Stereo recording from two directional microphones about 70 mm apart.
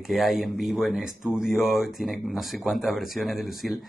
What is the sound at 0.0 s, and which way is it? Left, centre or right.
Speech, centre.